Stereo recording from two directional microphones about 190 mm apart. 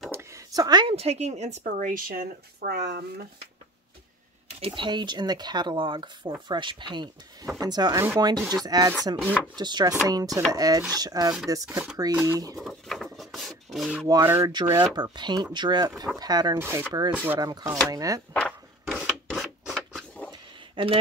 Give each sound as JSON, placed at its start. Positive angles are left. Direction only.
{"t": 0.1, "sound": "speech", "side_deg": -15}
{"t": 4.6, "sound": "speech", "side_deg": -25}
{"t": 11.7, "sound": "speech", "side_deg": -5}
{"t": 12.5, "sound": "a sound", "side_deg": 0}
{"t": 14.0, "sound": "speech", "side_deg": -15}
{"t": 17.4, "sound": "speech", "side_deg": -20}
{"t": 18.3, "sound": "rub", "side_deg": 5}
{"t": 20.2, "sound": "a sound", "side_deg": -25}